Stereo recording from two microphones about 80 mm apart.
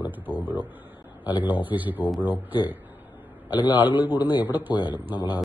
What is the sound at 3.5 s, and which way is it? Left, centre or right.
Speech, left.